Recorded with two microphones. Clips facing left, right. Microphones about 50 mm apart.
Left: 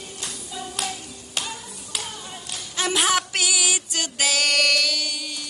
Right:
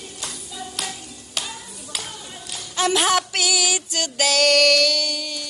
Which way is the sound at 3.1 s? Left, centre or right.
Centre.